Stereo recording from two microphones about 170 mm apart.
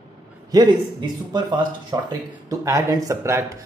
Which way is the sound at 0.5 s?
25° right (ahead or behind).